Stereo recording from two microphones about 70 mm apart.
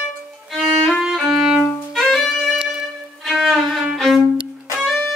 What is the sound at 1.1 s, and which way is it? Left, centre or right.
Music, centre.